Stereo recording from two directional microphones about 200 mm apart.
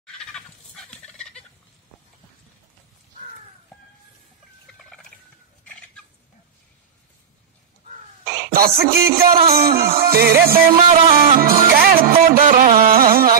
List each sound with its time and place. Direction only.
0.0 s fowl: 5° left (ahead or behind)
4.7 s turkey: 5° left (ahead or behind)
8.5 s music: 45° right (ahead or behind)
10.8 s music: 30° right (ahead or behind)
11.3 s music: 45° right (ahead or behind)